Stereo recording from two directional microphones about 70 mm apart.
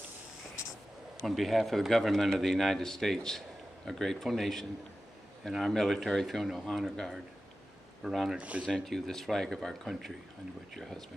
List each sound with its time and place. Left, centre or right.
1.2 s a man's voice: centre
8.4 s speech: centre
8.6 s a man's voice: centre